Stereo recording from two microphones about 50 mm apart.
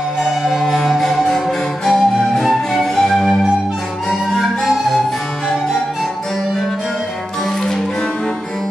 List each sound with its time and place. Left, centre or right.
0.2 s music: centre
4.6 s music: centre